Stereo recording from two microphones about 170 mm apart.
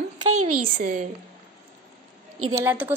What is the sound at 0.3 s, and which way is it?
Speech, 55° right (ahead or behind).